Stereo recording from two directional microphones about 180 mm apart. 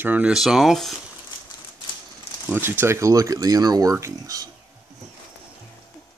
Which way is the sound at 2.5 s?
10° right (ahead or behind).